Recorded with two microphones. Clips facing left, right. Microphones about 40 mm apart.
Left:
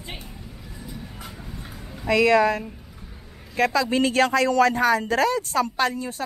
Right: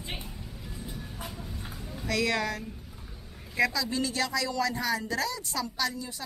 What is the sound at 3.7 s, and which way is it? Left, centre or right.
Speech, left.